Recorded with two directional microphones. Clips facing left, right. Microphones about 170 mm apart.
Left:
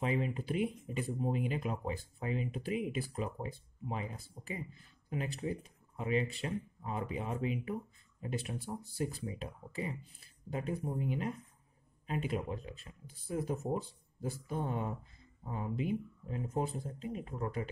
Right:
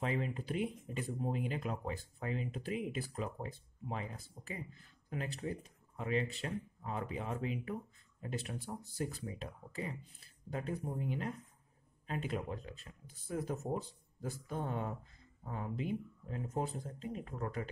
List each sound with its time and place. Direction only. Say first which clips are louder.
0.0 s speech: left 3 dB; 10° left (ahead or behind)